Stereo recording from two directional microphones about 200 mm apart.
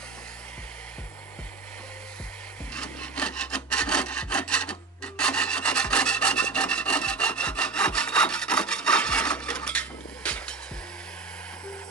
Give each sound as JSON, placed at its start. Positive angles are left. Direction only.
{"t": 2.7, "sound": "sawing", "side_deg": 5}